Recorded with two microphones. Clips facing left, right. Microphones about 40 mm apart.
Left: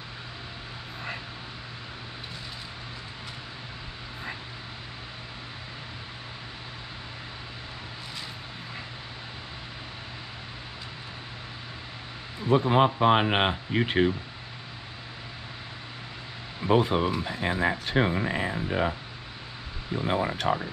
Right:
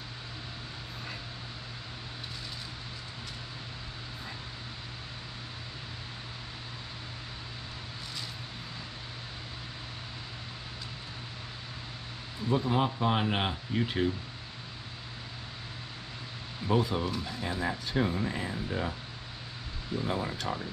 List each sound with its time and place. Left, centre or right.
12.4 s speech: left
16.6 s speech: left
20.0 s speech: left